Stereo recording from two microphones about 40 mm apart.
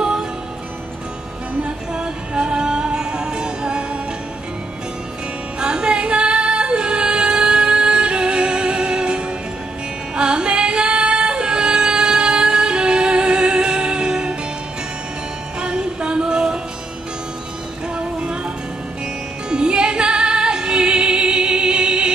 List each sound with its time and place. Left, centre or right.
0.0 s music: centre
2.0 s music: right
5.6 s music: right
15.6 s music: right
17.9 s music: right
19.5 s music: right